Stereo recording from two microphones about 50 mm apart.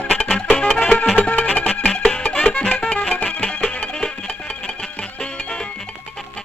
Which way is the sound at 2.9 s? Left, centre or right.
Left.